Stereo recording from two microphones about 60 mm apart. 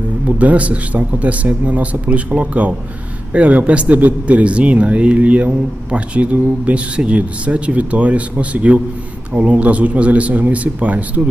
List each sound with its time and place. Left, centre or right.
0.4 s a man's voice: right